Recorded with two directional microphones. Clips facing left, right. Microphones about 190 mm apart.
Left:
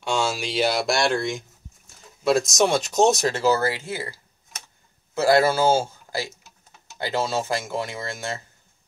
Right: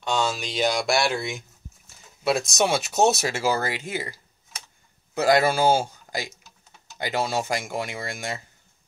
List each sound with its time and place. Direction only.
0.0 s speech: 10° left (ahead or behind); by 4.1 s 15° right (ahead or behind)
5.1 s speech: 15° right (ahead or behind)